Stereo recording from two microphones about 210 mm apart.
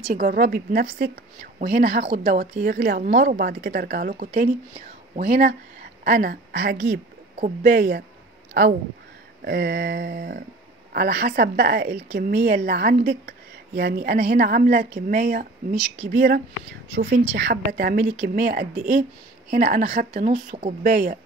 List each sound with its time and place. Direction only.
0.1 s a woman's voice: 40° right (ahead or behind)
9.4 s a woman's voice: 50° right (ahead or behind)